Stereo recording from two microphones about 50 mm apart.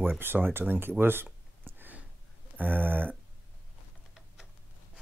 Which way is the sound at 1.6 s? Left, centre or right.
Right.